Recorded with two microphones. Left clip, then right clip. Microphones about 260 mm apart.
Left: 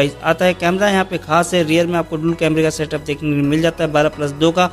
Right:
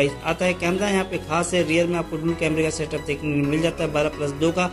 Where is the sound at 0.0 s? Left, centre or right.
Left.